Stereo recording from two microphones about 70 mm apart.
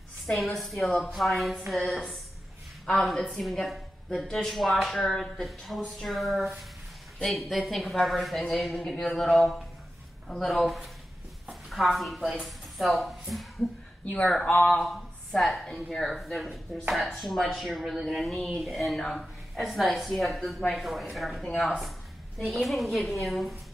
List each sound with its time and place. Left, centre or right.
0.3 s speech: centre
2.9 s speech: centre
14.0 s speech: centre
14.9 s speech: centre